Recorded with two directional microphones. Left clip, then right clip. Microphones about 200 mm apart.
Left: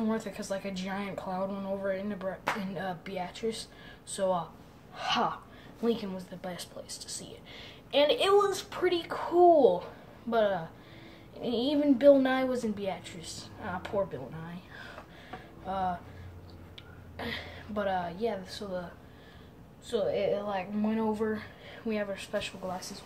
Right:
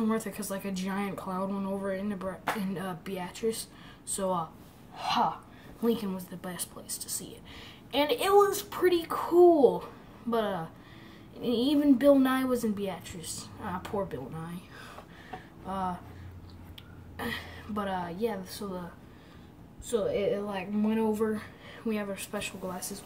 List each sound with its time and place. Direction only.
0.0 s a woman's voice: 10° right (ahead or behind)
4.9 s speech: 20° left (ahead or behind)
5.8 s a woman's voice: 5° right (ahead or behind)
15.6 s speech: 5° right (ahead or behind)
17.2 s a woman's voice: 5° right (ahead or behind)
19.9 s a woman's voice: 10° right (ahead or behind)